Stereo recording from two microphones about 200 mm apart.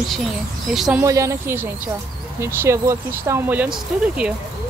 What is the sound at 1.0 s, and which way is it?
Speech, 15° right (ahead or behind).